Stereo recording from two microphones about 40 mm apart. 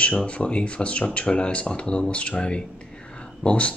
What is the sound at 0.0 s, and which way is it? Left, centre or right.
Speech, left.